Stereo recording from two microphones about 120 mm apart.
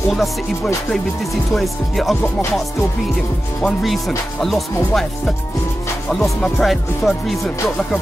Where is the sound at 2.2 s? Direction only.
25° left (ahead or behind).